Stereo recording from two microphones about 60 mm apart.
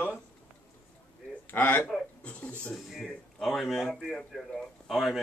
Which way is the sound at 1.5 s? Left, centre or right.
Left.